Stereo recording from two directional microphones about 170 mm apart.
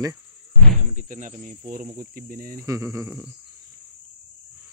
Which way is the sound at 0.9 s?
50° right (ahead or behind).